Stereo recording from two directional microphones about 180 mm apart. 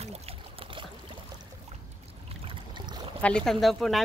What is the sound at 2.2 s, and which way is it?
Boat, 30° right (ahead or behind).